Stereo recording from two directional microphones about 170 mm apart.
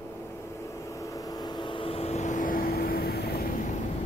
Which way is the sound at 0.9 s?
20° left (ahead or behind).